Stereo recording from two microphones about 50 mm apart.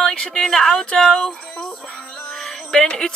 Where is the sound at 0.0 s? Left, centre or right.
Centre.